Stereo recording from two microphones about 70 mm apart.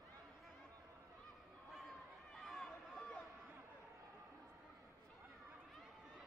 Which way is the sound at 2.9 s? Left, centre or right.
Centre.